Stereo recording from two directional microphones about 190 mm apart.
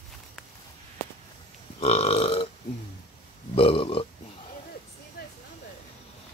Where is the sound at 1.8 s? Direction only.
30° left (ahead or behind).